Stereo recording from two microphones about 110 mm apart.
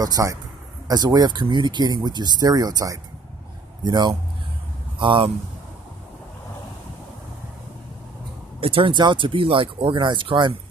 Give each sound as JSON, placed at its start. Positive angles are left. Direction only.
{"t": 0.0, "sound": "speech", "side_deg": -35}
{"t": 4.9, "sound": "speech", "side_deg": -50}
{"t": 8.5, "sound": "speech", "side_deg": -55}